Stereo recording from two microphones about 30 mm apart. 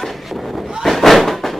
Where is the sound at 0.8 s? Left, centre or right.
Centre.